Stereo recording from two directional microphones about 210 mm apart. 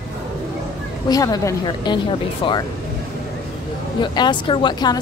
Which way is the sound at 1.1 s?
15° left (ahead or behind).